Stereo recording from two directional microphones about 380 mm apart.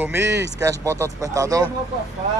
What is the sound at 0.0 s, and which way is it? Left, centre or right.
Speech, centre.